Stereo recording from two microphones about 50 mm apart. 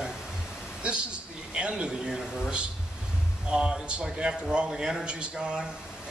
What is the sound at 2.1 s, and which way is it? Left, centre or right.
Speech, centre.